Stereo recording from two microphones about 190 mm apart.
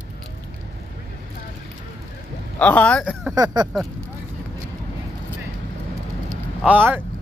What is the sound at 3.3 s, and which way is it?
Speech, 20° right (ahead or behind).